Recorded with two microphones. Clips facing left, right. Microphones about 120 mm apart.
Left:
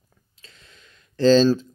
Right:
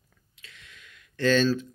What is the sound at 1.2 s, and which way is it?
Speech, 30° left (ahead or behind).